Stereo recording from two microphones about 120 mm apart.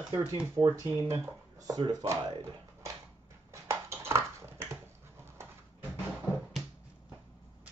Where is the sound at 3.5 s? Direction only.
25° right (ahead or behind).